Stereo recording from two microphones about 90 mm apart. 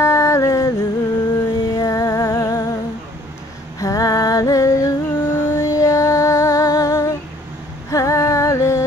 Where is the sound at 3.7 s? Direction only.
40° left (ahead or behind).